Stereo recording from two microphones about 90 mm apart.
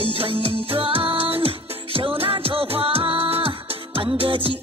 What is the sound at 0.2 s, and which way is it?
Music, 85° right.